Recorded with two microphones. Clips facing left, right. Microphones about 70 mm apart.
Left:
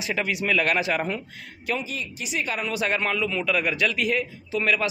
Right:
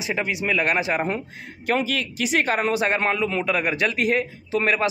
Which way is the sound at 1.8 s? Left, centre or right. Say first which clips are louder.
Right 8 dB; right.